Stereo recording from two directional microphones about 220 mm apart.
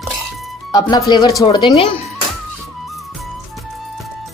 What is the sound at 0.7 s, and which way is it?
Speech, 20° left (ahead or behind).